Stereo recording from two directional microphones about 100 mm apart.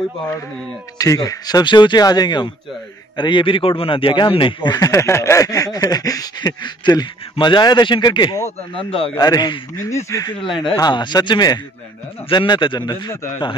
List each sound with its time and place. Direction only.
0.9 s a man's voice: 35° left (ahead or behind); by 4.7 s 55° left (ahead or behind)
4.7 s speech: 30° left (ahead or behind); by 8.4 s 50° left (ahead or behind)
8.5 s speech: 70° left (ahead or behind)
9.1 s speech: 40° left (ahead or behind)
10.8 s speech: 50° left (ahead or behind)